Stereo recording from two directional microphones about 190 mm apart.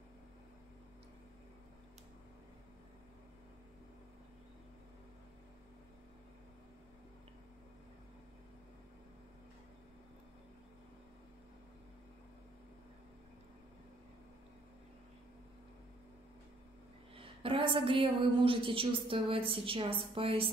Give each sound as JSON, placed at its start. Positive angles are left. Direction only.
{"t": 17.2, "sound": "a woman's voice", "side_deg": -30}